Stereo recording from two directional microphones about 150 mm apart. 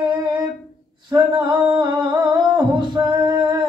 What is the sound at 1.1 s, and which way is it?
Singing, 30° right (ahead or behind).